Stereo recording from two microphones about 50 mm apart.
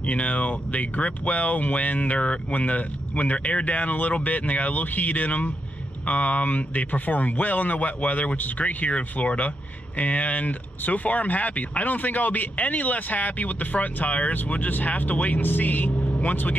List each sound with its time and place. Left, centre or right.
0.0 s speech: left